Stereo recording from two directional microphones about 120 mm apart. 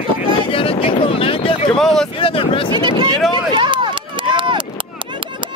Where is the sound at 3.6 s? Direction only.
45° right (ahead or behind).